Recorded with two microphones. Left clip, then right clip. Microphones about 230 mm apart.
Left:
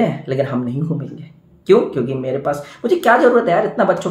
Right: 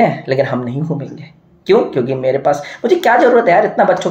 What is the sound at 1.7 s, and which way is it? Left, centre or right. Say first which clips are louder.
Speech: right 2 dB; centre.